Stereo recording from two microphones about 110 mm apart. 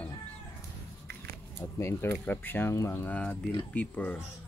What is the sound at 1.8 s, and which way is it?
Speech, 25° left (ahead or behind).